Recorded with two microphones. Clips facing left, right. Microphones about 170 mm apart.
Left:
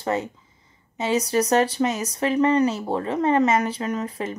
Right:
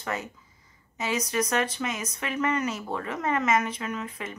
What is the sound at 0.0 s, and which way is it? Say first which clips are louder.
Speech: left 8 dB; 30° left (ahead or behind).